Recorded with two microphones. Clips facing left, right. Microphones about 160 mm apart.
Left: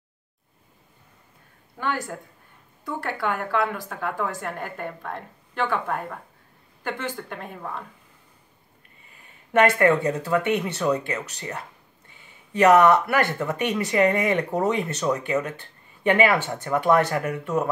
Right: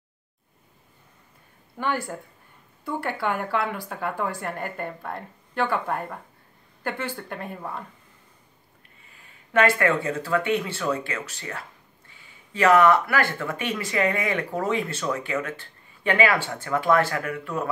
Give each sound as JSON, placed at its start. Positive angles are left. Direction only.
{"t": 2.8, "sound": "speech", "side_deg": -5}
{"t": 9.5, "sound": "speech", "side_deg": 20}
{"t": 12.6, "sound": "speech", "side_deg": 20}